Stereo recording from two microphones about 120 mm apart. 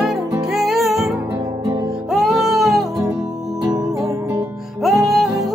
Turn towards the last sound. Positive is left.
turn(degrees=0)  # may be behind; listen again after turning